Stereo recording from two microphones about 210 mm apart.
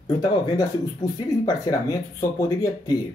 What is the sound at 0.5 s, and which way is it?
Speech, 15° left (ahead or behind).